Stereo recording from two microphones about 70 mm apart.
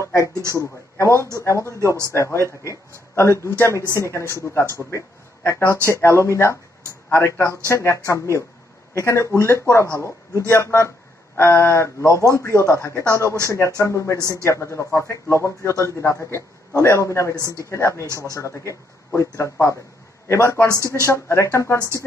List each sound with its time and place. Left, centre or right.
0.1 s speech: right
0.9 s a man's voice: left
3.2 s a man's voice: left
14.4 s a man's voice: left
18.1 s a man's voice: left
20.6 s speech: right
21.0 s a man's voice: left